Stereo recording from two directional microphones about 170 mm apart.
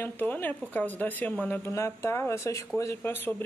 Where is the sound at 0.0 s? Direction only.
10° left (ahead or behind).